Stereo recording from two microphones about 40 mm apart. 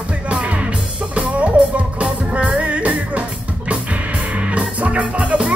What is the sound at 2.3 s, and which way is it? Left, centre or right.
Music, right.